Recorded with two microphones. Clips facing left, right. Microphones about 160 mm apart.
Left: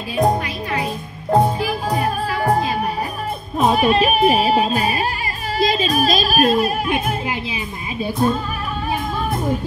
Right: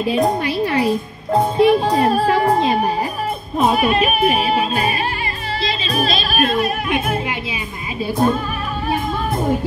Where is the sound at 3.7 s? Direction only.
35° left (ahead or behind).